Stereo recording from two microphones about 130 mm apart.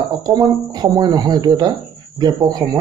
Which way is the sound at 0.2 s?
35° right (ahead or behind).